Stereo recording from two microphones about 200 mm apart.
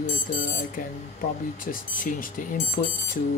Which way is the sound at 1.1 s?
45° left (ahead or behind).